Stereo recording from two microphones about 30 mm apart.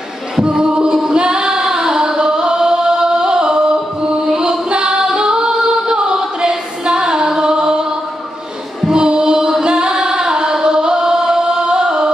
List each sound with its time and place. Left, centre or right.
0.4 s singing: right
8.8 s choir: right